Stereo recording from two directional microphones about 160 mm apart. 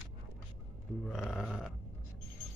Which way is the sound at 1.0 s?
5° left (ahead or behind).